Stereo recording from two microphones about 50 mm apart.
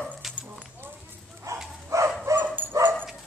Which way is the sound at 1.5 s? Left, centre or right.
Right.